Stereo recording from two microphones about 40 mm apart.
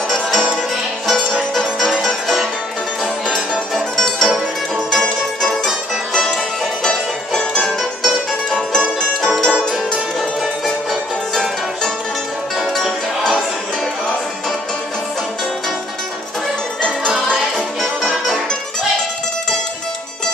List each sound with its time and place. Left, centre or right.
0.1 s music: centre
1.8 s music: centre
3.7 s music: centre
6.8 s music: centre
12.5 s music: centre
17.3 s music: centre